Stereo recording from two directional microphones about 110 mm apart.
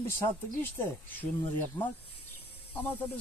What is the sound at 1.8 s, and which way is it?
Speech, 20° left (ahead or behind).